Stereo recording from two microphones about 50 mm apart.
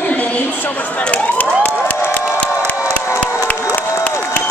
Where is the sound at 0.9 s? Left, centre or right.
Left.